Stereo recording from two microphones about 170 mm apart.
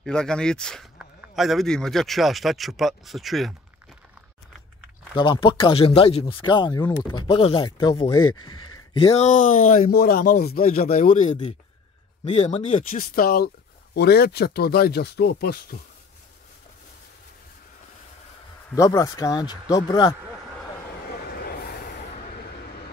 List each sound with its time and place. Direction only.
0.0 s speech: 5° left (ahead or behind)
5.1 s speech: 30° left (ahead or behind)
8.9 s speech: 35° left (ahead or behind)
12.3 s speech: 40° left (ahead or behind)
12.9 s speech: 60° left (ahead or behind)
18.8 s speech: 20° left (ahead or behind)
21.0 s vehicle: 65° left (ahead or behind)